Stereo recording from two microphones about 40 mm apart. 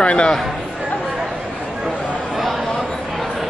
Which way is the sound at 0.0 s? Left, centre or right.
Left.